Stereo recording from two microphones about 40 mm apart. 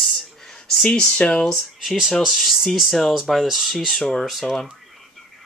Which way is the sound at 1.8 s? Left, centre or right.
Centre.